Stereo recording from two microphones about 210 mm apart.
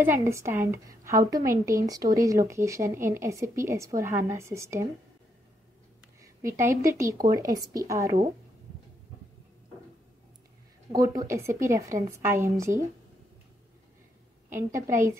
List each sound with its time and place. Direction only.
0.0 s a woman's voice: 15° right (ahead or behind)
6.2 s a woman's voice: 15° right (ahead or behind)
10.9 s a woman's voice: 15° right (ahead or behind)
14.5 s a woman's voice: 15° right (ahead or behind)